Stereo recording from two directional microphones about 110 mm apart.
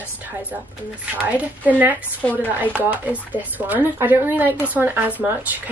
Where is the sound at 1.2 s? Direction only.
15° right (ahead or behind).